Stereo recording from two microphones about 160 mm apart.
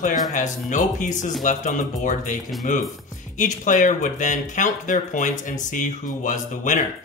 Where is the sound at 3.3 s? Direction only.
55° left (ahead or behind).